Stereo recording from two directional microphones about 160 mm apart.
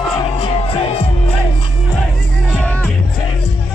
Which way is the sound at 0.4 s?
35° left (ahead or behind).